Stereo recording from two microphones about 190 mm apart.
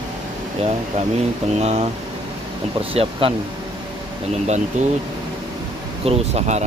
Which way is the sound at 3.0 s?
30° right (ahead or behind).